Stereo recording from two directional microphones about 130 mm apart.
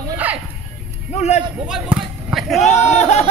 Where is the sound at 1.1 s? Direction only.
60° left (ahead or behind).